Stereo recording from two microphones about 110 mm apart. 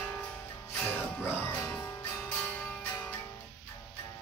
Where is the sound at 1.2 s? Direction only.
20° left (ahead or behind).